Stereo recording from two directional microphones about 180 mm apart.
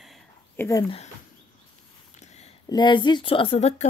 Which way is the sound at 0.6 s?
20° left (ahead or behind).